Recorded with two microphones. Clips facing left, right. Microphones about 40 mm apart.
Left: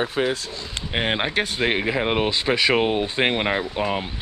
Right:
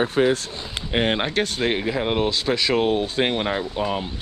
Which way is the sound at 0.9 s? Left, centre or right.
Centre.